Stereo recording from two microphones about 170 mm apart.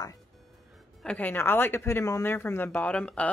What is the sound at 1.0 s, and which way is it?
Speech, 10° left (ahead or behind).